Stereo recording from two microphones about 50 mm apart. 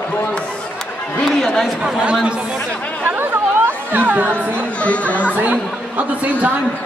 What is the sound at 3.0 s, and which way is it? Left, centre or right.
A man's voice, right.